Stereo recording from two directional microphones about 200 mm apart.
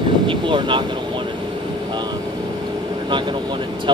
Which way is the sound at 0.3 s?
25° right (ahead or behind).